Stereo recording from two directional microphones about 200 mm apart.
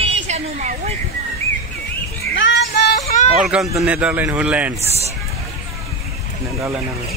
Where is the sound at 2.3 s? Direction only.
60° left (ahead or behind).